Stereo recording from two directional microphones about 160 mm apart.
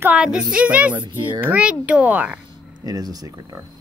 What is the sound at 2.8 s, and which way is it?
Speech, 25° right (ahead or behind).